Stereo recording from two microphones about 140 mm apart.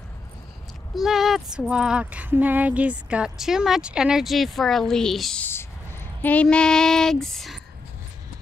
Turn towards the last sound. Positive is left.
turn(degrees=0)  # may be behind; listen again after turning